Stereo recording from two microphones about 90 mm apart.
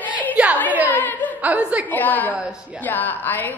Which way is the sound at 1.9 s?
20° left (ahead or behind).